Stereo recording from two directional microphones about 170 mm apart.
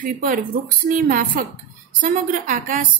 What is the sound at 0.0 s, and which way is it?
A woman's voice, 55° right (ahead or behind).